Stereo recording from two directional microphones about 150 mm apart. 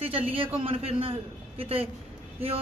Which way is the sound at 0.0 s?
40° right (ahead or behind).